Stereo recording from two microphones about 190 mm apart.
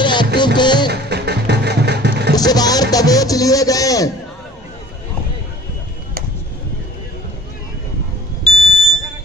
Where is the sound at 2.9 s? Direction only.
20° left (ahead or behind).